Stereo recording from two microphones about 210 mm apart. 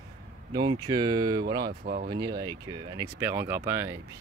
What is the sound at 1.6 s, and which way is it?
Speech, 45° right (ahead or behind).